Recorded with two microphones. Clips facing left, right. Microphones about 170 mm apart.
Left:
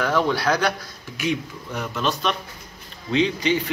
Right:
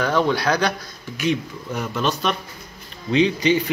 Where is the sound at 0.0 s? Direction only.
5° left (ahead or behind).